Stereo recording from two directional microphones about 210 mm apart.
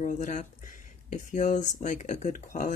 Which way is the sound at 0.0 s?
35° left (ahead or behind).